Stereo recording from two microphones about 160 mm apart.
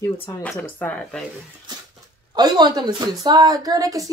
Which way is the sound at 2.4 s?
25° right (ahead or behind).